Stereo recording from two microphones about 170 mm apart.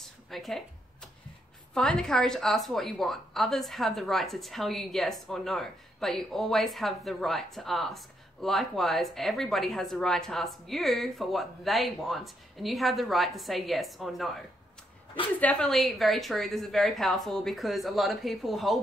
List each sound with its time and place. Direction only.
0.3 s a woman's voice: centre (ahead or behind)
1.7 s a woman's voice: 5° left (ahead or behind)
15.4 s a woman's voice: 5° left (ahead or behind)